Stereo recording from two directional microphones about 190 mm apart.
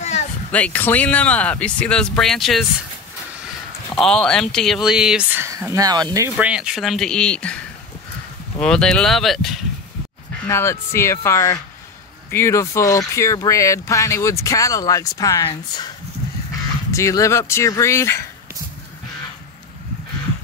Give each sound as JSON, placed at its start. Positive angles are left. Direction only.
{"t": 0.0, "sound": "a sound", "side_deg": 35}
{"t": 0.5, "sound": "speech", "side_deg": 5}
{"t": 6.3, "sound": "speech", "side_deg": -5}
{"t": 10.4, "sound": "speech", "side_deg": 15}
{"t": 16.9, "sound": "speech", "side_deg": 15}